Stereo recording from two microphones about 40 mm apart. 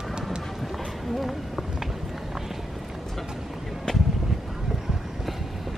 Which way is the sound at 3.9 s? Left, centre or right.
Centre.